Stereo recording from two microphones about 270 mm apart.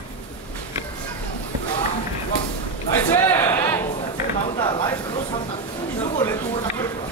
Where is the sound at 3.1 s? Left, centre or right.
Centre.